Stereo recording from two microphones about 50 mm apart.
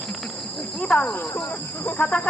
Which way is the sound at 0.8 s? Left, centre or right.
Left.